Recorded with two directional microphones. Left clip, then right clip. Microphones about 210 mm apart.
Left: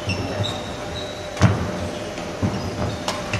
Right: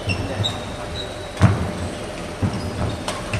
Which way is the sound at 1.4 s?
20° left (ahead or behind).